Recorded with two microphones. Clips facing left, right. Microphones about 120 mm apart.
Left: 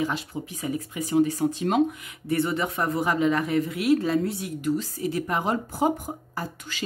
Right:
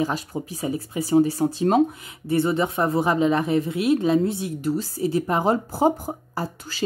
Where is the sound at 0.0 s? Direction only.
40° right (ahead or behind).